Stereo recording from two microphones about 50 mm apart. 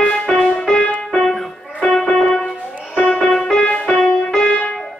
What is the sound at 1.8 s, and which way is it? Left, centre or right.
Music, centre.